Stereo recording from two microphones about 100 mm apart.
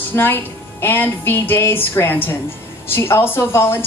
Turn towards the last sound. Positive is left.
turn(degrees=25)  # may be behind; listen again after turning